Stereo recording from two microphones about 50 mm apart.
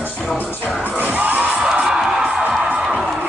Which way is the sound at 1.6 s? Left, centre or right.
Centre.